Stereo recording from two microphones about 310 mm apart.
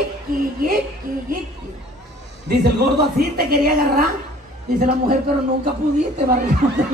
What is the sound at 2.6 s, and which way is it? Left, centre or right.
A woman's voice, right.